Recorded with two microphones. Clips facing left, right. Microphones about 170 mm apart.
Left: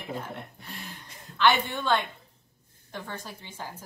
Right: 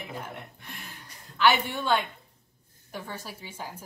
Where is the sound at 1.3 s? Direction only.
10° right (ahead or behind).